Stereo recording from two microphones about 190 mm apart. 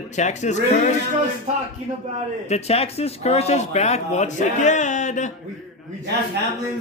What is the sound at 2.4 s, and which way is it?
Speech, 35° left (ahead or behind).